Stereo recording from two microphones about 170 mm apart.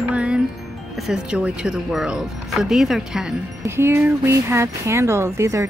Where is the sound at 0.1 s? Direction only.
5° right (ahead or behind).